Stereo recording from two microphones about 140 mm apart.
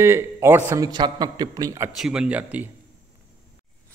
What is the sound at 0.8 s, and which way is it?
A man's voice, 30° right (ahead or behind).